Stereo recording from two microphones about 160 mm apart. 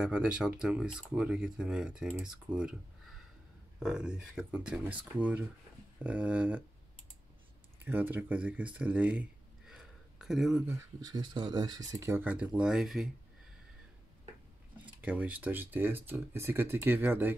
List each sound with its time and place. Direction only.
0.0 s speech: 5° right (ahead or behind)
3.8 s speech: 5° right (ahead or behind)
7.8 s speech: 10° right (ahead or behind)
10.7 s speech: 25° right (ahead or behind); by 13.1 s centre (ahead or behind)
15.0 s speech: 10° right (ahead or behind)